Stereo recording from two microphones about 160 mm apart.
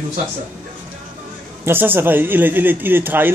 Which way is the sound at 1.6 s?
15° right (ahead or behind).